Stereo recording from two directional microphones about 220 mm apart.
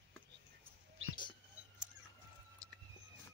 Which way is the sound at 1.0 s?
65° right (ahead or behind).